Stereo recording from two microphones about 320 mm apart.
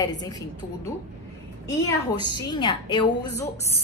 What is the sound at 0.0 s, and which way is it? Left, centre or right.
Speech, centre.